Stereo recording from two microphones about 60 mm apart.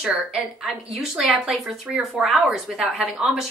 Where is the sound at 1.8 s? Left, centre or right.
Right.